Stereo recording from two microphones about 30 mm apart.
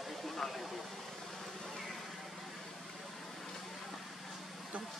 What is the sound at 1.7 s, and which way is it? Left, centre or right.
Vehicle, centre.